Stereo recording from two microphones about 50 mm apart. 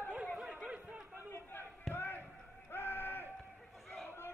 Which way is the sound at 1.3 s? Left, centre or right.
Left.